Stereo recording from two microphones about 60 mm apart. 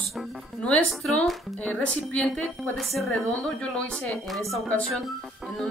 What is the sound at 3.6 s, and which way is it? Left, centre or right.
Speech, centre.